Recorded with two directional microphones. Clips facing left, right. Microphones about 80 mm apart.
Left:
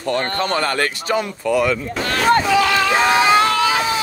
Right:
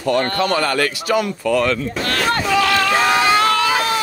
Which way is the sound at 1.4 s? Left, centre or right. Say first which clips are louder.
Left 2 dB; centre.